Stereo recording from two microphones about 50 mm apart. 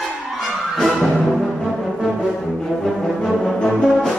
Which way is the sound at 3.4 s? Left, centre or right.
Centre.